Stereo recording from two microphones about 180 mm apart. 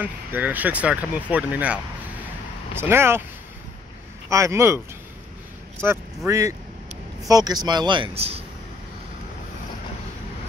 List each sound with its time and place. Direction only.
0.0 s speech: 10° right (ahead or behind)
4.3 s speech: 15° right (ahead or behind)
5.8 s speech: 15° right (ahead or behind); by 8.4 s 35° right (ahead or behind)